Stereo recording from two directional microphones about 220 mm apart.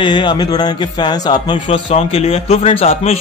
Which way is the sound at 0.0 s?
20° left (ahead or behind).